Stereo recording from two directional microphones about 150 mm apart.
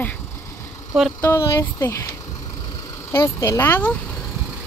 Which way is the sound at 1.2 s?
20° left (ahead or behind).